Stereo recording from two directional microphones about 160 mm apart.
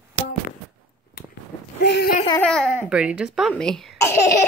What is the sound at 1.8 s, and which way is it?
Speech, 90° left.